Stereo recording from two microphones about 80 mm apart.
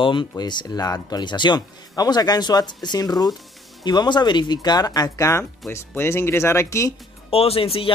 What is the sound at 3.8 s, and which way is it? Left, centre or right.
Speech, left.